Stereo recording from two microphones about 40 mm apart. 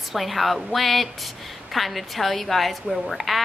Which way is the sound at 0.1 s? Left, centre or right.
Centre.